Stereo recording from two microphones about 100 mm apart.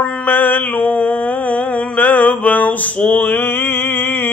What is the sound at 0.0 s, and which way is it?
Mantra, 15° left (ahead or behind).